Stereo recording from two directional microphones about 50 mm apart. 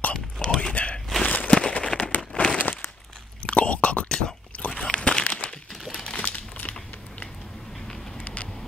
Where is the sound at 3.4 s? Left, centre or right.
Left.